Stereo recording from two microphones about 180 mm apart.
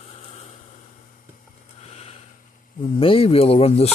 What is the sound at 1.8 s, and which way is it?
Vehicle, 35° left (ahead or behind).